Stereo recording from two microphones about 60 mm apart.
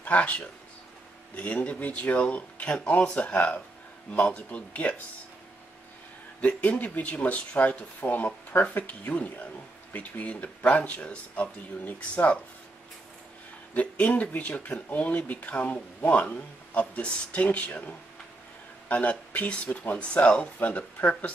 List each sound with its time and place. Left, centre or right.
0.0 s speech: left
6.4 s speech: left
13.7 s speech: left
20.5 s speech: left